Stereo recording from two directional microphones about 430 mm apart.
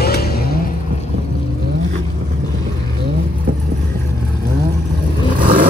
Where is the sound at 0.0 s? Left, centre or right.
Left.